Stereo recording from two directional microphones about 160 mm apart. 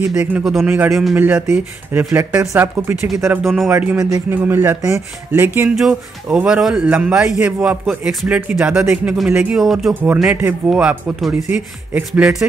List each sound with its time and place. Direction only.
0.2 s speech: 5° right (ahead or behind)
3.4 s speech: centre (ahead or behind)